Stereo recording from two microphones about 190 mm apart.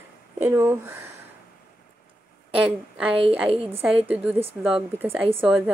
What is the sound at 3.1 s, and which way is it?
Speech, 30° right (ahead or behind).